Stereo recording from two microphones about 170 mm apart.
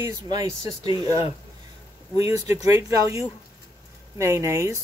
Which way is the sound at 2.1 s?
20° right (ahead or behind).